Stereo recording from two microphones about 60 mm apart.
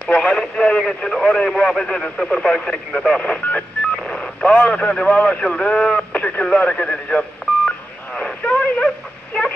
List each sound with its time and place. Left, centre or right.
0.2 s speech: centre
3.9 s radio: centre